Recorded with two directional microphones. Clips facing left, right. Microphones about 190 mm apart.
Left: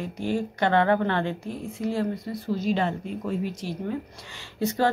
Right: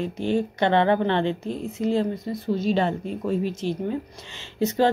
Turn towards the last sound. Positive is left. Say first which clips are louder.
# right 4 dB
turn(degrees=-20)  # may be behind; listen again after turning